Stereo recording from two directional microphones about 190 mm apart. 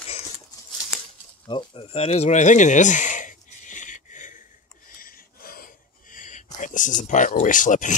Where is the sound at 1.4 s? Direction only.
25° left (ahead or behind).